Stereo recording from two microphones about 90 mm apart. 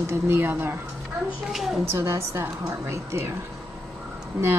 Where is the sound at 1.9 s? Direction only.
30° right (ahead or behind).